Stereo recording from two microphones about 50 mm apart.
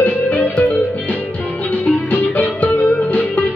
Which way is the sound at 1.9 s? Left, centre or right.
Left.